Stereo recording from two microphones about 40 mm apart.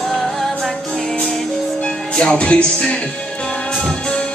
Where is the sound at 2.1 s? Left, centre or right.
Left.